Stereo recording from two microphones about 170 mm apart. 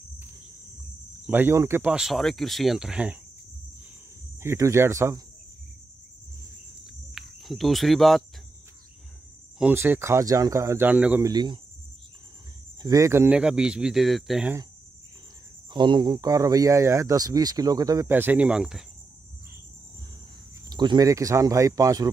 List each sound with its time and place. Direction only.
1.2 s speech: 10° right (ahead or behind)
4.4 s speech: 15° right (ahead or behind)
7.2 s speech: centre (ahead or behind)
9.6 s speech: 10° right (ahead or behind)
11.2 s speech: 25° right (ahead or behind)
12.8 s speech: 20° right (ahead or behind); by 14.5 s centre (ahead or behind)
15.7 s speech: 25° right (ahead or behind); by 18.9 s 5° right (ahead or behind)
20.7 s speech: 25° right (ahead or behind)